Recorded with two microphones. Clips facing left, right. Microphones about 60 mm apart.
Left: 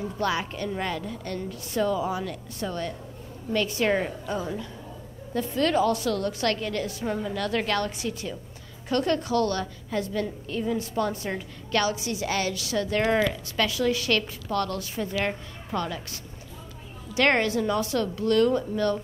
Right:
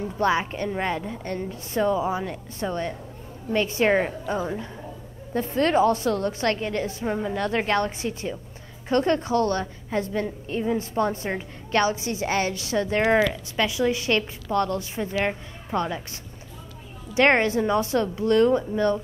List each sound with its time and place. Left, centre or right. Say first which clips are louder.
0.2 s a woman's voice: right 5 dB; right
13.2 s a woman's voice: right 2 dB; centre